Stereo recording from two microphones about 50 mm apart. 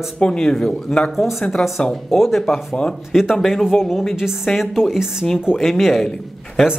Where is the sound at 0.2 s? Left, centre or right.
Centre.